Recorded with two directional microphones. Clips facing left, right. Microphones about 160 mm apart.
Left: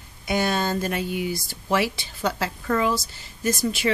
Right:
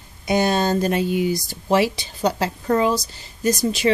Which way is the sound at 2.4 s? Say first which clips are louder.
Right 4 dB; 35° right (ahead or behind).